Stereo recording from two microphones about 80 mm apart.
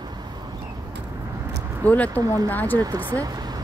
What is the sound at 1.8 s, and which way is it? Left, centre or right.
Speech, centre.